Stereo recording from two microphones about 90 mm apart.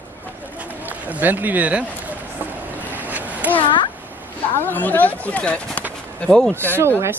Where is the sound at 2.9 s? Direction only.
20° right (ahead or behind).